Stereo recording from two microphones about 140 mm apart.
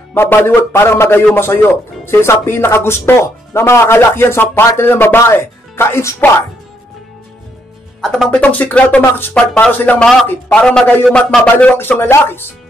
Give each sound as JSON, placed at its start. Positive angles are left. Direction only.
{"t": 0.1, "sound": "speech", "side_deg": 15}
{"t": 8.0, "sound": "speech", "side_deg": 5}